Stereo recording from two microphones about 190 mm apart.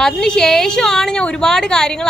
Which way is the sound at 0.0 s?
5° left (ahead or behind).